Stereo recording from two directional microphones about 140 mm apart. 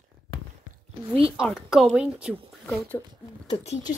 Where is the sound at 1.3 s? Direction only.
5° right (ahead or behind).